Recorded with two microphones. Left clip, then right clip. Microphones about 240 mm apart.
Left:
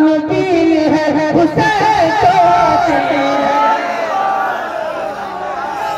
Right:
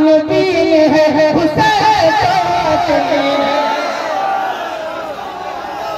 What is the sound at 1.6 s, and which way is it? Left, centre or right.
Music, right.